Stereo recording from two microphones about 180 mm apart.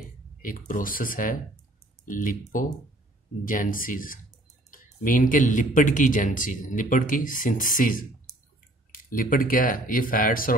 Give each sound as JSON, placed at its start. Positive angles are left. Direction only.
{"t": 0.4, "sound": "speech", "side_deg": 50}